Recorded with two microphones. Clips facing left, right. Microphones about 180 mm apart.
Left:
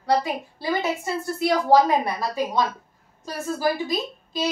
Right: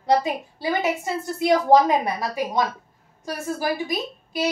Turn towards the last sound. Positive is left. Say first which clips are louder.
# right 2 dB
turn(degrees=-15)  # may be behind; listen again after turning